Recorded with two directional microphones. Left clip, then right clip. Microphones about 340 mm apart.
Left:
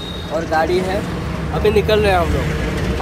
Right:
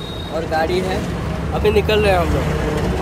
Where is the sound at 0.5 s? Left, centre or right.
Centre.